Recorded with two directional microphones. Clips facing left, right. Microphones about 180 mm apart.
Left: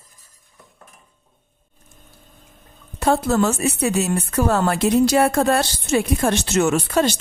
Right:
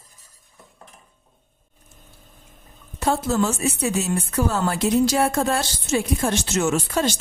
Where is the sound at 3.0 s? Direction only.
60° left (ahead or behind).